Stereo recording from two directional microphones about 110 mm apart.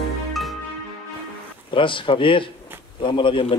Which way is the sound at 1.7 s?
50° left (ahead or behind).